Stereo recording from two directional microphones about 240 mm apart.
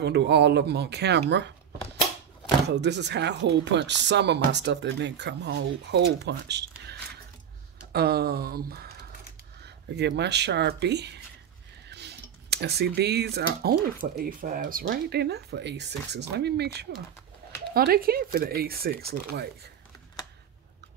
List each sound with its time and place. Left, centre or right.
0.0 s speech: right
2.7 s speech: right
7.9 s speech: right